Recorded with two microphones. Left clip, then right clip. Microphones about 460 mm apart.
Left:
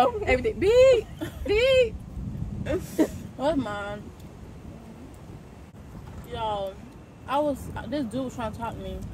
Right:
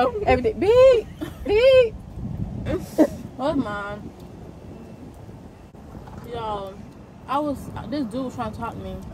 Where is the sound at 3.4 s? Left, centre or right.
Centre.